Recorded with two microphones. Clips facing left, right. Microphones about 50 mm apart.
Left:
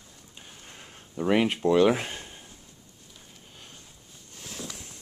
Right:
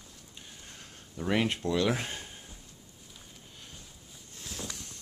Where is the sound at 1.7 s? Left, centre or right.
Left.